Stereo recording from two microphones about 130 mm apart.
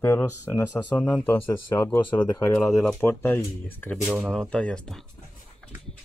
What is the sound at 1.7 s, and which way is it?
Speech, 15° left (ahead or behind).